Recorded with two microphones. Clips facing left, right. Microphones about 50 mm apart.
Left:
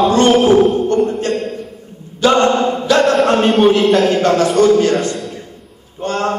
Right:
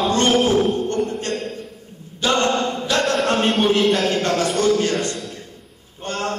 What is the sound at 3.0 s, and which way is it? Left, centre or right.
Music, centre.